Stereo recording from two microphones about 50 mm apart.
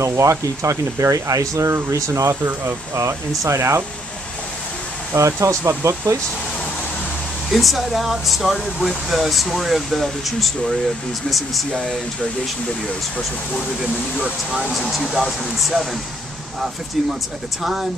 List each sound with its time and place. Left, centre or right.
0.0 s speech: right
2.6 s speech: right
5.1 s speech: right
5.7 s speech: right
7.5 s speech: centre
14.6 s speech: centre